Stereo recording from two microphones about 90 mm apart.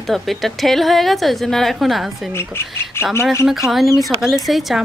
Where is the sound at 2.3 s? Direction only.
25° left (ahead or behind).